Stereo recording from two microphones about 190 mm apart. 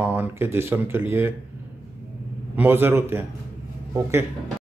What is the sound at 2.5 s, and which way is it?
Speech, 10° right (ahead or behind).